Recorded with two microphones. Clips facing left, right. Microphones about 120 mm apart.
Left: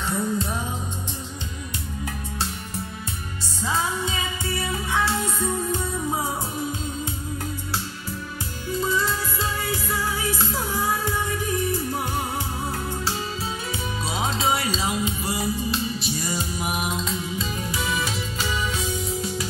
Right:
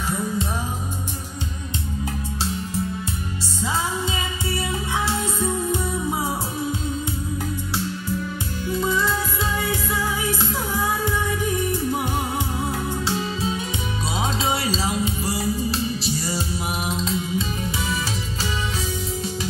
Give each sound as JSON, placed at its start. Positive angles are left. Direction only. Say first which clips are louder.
{"t": 14.5, "sound": "music", "louder": "right 1 dB", "side_deg": -30}